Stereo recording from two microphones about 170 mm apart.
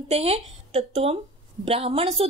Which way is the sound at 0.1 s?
35° right (ahead or behind).